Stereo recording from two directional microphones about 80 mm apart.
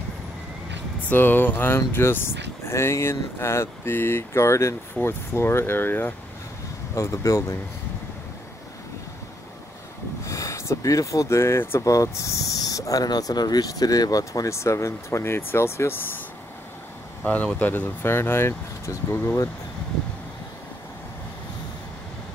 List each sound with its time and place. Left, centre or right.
1.0 s speech: left
7.0 s speech: left
10.2 s speech: left
11.8 s speech: left
17.2 s speech: centre; by 19.4 s left